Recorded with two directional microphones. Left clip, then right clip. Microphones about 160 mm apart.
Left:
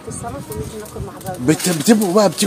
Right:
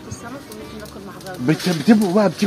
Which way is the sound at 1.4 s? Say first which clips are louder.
Left 2 dB; 25° left (ahead or behind).